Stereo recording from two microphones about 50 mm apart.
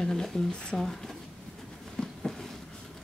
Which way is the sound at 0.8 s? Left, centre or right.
Centre.